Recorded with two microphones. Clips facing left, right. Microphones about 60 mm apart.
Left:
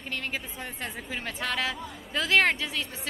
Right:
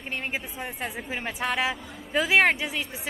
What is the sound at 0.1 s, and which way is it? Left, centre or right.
A woman's voice, centre.